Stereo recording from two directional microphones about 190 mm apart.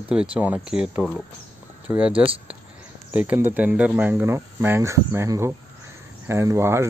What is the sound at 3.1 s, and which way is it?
Speech, 10° right (ahead or behind).